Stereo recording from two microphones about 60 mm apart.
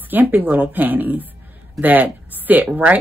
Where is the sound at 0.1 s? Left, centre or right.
Right.